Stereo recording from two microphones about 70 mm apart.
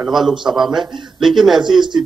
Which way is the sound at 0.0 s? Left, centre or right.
Centre.